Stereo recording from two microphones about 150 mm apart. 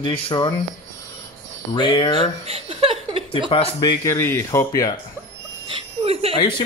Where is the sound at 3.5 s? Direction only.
35° left (ahead or behind).